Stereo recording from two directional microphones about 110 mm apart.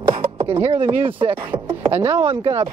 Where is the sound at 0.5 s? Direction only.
60° right (ahead or behind).